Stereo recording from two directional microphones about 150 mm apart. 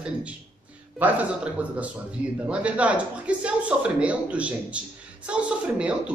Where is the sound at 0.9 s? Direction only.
10° right (ahead or behind).